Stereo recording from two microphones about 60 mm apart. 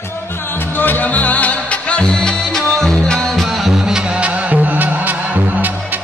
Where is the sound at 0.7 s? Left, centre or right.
Left; by 3.7 s centre.